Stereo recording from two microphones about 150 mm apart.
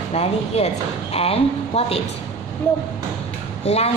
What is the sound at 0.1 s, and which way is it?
A woman's voice, 45° left (ahead or behind).